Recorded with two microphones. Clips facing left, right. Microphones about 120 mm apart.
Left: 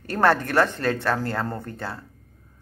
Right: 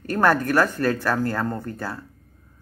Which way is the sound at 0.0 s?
30° left (ahead or behind).